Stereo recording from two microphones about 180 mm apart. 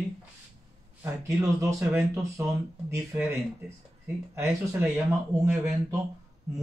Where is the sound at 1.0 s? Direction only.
15° right (ahead or behind).